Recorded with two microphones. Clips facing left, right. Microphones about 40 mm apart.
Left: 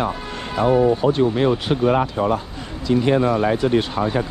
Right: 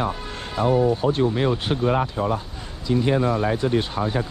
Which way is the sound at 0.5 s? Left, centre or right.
Left.